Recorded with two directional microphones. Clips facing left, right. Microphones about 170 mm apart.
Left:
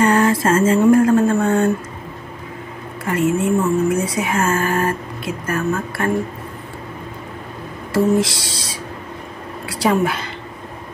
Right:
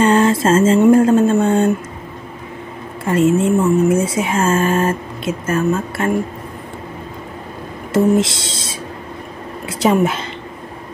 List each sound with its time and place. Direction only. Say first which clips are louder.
0.0 s a sound: right 2 dB; 25° right (ahead or behind)
3.1 s speech: right 4 dB; 25° right (ahead or behind)
7.9 s speech: right 2 dB; 20° right (ahead or behind)